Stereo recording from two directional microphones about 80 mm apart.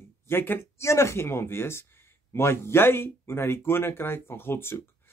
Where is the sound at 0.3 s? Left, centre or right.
Left.